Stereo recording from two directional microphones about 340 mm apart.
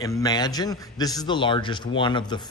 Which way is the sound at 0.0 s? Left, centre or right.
Centre.